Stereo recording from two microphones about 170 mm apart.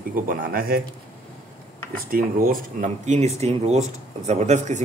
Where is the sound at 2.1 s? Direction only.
60° right (ahead or behind).